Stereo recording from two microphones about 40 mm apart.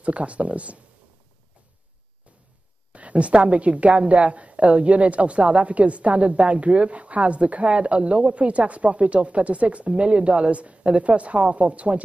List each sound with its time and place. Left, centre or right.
0.0 s a woman's voice: right
2.9 s a woman's voice: right